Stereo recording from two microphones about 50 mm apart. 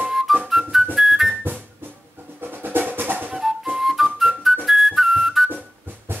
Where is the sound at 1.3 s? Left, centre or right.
Right.